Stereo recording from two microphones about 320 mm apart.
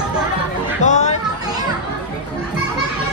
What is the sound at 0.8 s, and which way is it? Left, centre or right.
Chatter, left.